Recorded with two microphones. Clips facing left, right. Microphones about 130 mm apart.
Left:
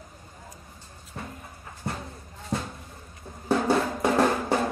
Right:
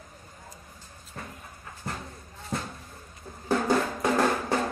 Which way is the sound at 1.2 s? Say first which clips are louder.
Left 3 dB; 20° left (ahead or behind).